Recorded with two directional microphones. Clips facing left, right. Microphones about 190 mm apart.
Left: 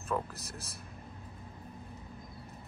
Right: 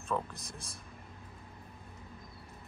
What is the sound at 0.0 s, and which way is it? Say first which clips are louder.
Speech: left 1 dB; 5° left (ahead or behind).